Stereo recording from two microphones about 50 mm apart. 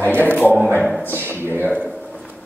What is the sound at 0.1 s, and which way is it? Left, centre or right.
Speech, right.